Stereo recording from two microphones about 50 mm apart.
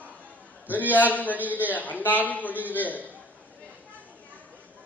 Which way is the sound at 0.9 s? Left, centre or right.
Left.